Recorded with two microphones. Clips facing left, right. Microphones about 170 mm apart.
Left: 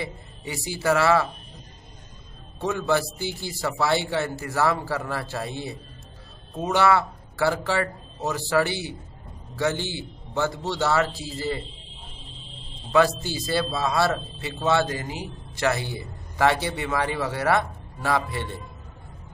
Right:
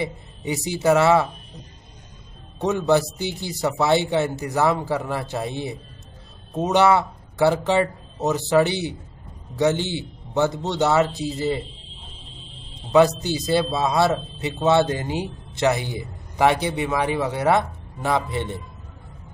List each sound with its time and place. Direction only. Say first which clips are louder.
0.0 s a man's voice: right 6 dB; 20° right (ahead or behind)
2.6 s a man's voice: right 5 dB; 20° right (ahead or behind)
13.2 s a man's voice: right 5 dB; 20° right (ahead or behind)